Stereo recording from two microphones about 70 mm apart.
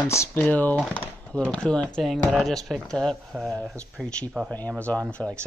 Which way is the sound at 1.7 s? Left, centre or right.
Centre.